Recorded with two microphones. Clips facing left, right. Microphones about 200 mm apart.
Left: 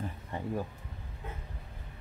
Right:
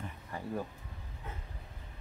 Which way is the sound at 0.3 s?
25° left (ahead or behind).